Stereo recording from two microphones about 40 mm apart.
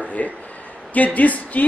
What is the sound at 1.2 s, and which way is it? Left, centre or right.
Speech, left.